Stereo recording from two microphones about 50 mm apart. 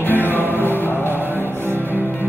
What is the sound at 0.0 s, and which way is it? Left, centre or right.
Music, left.